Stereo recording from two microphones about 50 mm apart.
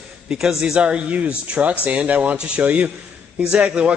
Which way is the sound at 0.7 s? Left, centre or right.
Right.